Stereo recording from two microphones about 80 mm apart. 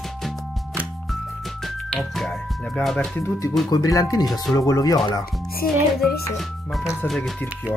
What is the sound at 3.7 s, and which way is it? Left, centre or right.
Speech, left.